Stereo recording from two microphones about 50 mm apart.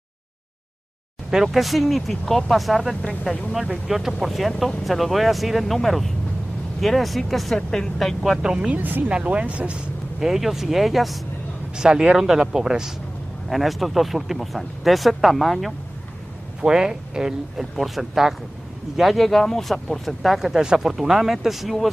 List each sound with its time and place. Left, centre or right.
1.3 s a woman's voice: centre
8.4 s speech: centre
8.7 s speech: right
9.1 s speech: right
10.2 s speech: centre
11.7 s speech: centre
16.6 s speech: centre
17.7 s speech: centre